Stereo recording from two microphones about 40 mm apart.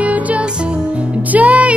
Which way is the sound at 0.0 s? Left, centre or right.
Right.